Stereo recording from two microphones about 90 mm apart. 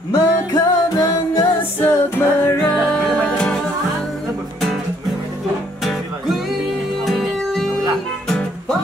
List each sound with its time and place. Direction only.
0.1 s music: 45° left (ahead or behind)
1.8 s music: 25° left (ahead or behind)
2.9 s music: 10° left (ahead or behind)
7.1 s music: centre (ahead or behind)